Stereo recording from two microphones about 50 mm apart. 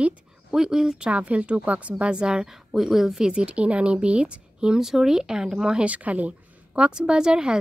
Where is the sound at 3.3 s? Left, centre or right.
Right.